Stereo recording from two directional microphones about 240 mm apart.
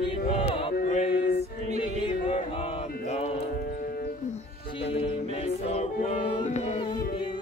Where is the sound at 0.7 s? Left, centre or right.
Left.